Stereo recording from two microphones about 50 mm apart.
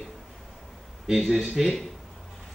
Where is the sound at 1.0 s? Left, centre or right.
Centre.